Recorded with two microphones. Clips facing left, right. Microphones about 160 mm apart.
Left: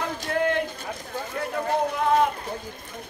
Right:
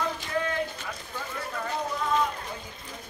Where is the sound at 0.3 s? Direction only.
65° left (ahead or behind).